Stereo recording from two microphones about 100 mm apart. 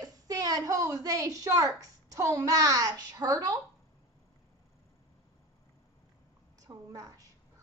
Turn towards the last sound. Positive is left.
turn(degrees=-40)  # may be behind; listen again after turning